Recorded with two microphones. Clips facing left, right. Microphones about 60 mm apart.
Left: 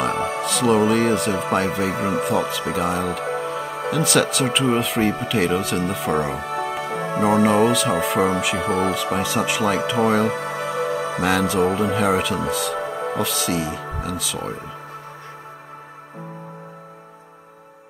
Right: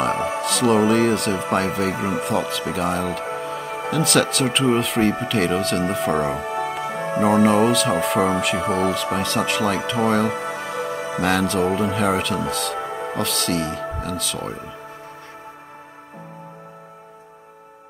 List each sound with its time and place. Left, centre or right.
0.0 s music: centre
0.4 s speech: centre
3.3 s music: centre
3.9 s speech: centre
6.4 s music: right
7.2 s speech: centre
10.5 s music: centre
11.1 s speech: centre